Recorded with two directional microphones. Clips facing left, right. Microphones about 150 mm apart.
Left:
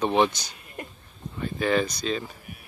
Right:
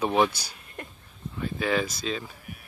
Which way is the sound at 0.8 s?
10° left (ahead or behind).